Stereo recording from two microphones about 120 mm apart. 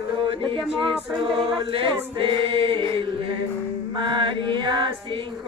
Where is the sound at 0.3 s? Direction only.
45° right (ahead or behind).